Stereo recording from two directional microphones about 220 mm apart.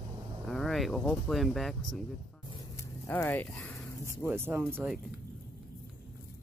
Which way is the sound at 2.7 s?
10° left (ahead or behind).